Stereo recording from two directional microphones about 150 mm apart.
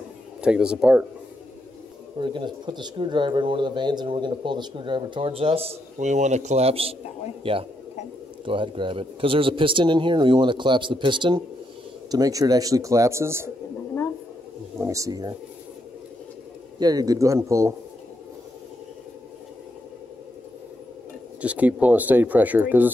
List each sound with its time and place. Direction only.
0.4 s speech: 5° right (ahead or behind)
2.1 s speech: 30° right (ahead or behind)
14.8 s speech: 20° right (ahead or behind)
16.8 s speech: 25° right (ahead or behind)
21.4 s speech: 10° right (ahead or behind)